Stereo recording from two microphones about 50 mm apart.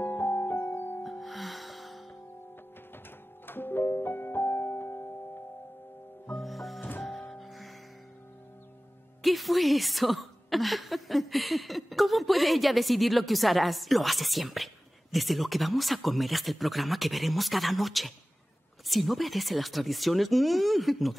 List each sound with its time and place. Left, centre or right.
0.0 s music: left
1.2 s music: centre
3.4 s music: left
6.3 s music: centre
9.2 s a woman's voice: centre